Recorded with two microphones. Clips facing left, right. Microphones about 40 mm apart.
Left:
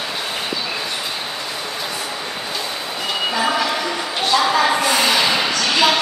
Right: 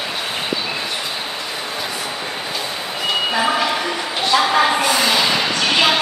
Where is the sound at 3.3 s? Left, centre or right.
Centre.